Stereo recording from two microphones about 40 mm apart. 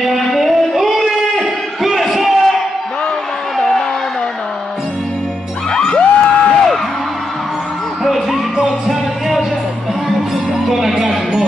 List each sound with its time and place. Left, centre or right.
0.2 s a sound: centre
5.8 s music: left
8.0 s music: centre
10.7 s music: centre